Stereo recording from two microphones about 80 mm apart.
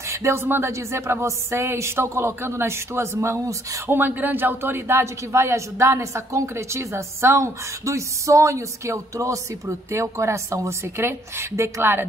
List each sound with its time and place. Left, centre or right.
0.1 s speech: right
3.9 s speech: right